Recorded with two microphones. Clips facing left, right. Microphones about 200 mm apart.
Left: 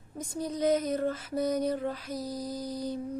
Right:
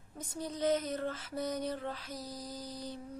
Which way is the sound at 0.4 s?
10° left (ahead or behind).